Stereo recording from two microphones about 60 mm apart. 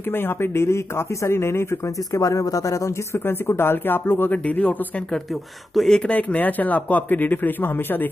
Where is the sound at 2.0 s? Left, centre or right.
Left.